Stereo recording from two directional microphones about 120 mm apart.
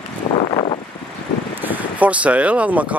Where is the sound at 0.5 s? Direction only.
50° left (ahead or behind).